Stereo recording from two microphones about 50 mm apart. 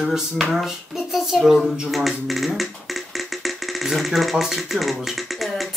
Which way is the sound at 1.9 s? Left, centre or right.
Centre.